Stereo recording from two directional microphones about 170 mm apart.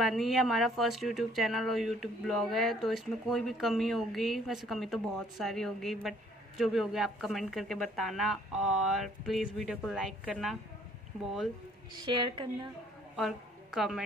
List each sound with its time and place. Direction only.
0.0 s speech: centre (ahead or behind)
11.9 s a woman's voice: 25° right (ahead or behind)
13.1 s a woman's voice: centre (ahead or behind)